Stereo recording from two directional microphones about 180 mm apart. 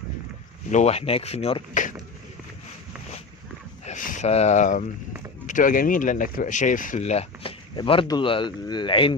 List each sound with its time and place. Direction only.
0.7 s speech: 40° left (ahead or behind)
3.8 s speech: 45° left (ahead or behind); by 9.1 s 25° left (ahead or behind)